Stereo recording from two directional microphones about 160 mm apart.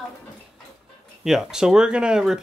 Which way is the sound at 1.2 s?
5° right (ahead or behind).